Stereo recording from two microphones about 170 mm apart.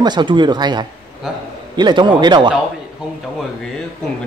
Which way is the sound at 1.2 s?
Centre (ahead or behind).